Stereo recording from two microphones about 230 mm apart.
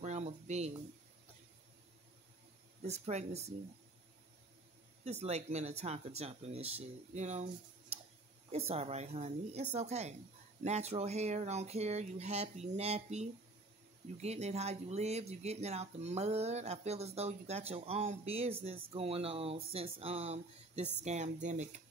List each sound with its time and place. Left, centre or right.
0.0 s a sound: right
2.8 s speech: right
5.0 s speech: right